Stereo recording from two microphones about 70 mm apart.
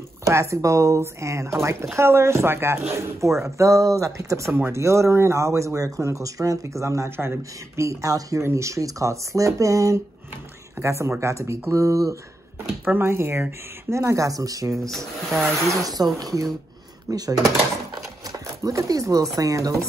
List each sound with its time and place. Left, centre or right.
0.2 s speech: right
10.8 s speech: right
12.8 s speech: right
14.8 s speech: centre
15.5 s speech: right
18.6 s speech: right